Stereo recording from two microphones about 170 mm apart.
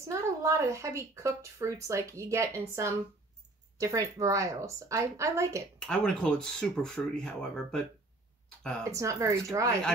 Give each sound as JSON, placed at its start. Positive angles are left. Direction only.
{"t": 0.0, "sound": "a woman's voice", "side_deg": -15}
{"t": 5.8, "sound": "speech", "side_deg": 5}
{"t": 8.8, "sound": "a woman's voice", "side_deg": -15}